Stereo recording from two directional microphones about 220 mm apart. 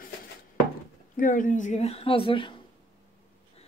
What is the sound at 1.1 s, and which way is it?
A woman's voice, 35° left (ahead or behind).